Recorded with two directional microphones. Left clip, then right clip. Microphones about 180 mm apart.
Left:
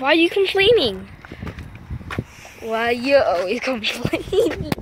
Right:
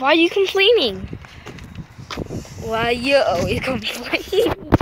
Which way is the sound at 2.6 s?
Centre (ahead or behind).